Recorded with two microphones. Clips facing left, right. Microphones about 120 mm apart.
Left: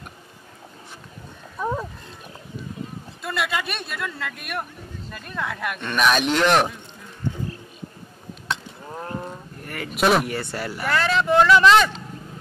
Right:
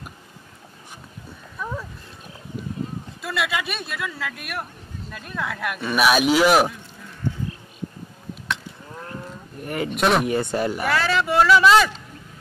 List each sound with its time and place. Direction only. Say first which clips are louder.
1.6 s a sound: left 5 dB; 30° left (ahead or behind)
3.2 s speech: even; centre (ahead or behind)
8.5 s wild animals: left 1 dB; 35° left (ahead or behind)
9.6 s a sound: right 8 dB; 20° right (ahead or behind)
9.8 s speech: left 1 dB; centre (ahead or behind)
10.2 s speech: right 6 dB; 20° right (ahead or behind)
10.9 s speech: left 4 dB; centre (ahead or behind)